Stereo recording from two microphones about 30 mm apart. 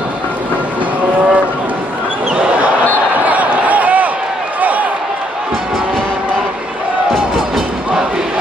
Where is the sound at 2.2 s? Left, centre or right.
Right.